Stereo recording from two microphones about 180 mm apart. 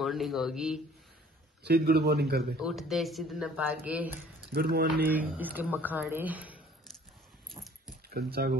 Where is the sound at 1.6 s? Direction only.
65° right (ahead or behind).